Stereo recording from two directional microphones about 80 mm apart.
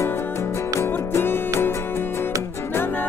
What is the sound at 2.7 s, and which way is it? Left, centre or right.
Music, left.